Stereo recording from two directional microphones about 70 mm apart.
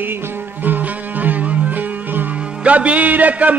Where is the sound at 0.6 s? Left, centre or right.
Right.